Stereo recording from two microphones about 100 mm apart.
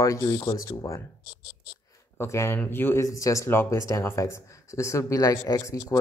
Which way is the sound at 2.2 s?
30° left (ahead or behind).